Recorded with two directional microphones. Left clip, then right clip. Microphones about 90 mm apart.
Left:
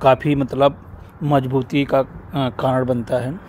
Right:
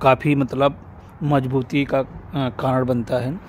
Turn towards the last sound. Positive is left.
turn(degrees=-20)  # may be behind; listen again after turning